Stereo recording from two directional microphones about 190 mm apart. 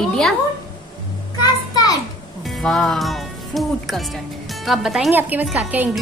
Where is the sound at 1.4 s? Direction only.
20° left (ahead or behind).